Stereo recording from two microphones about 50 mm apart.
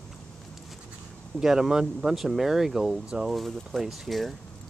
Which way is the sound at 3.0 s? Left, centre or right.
Centre.